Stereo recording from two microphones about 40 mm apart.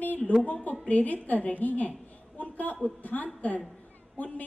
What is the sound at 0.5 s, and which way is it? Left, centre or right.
A woman's voice, left.